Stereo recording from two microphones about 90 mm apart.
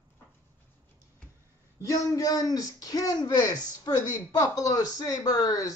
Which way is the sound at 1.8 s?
40° left (ahead or behind).